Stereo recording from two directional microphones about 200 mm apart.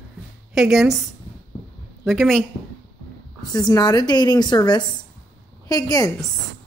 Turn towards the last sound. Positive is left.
turn(degrees=20)  # may be behind; listen again after turning